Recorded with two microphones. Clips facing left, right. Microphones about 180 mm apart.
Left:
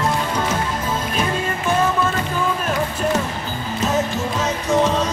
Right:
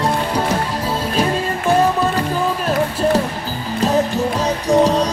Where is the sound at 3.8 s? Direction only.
35° right (ahead or behind).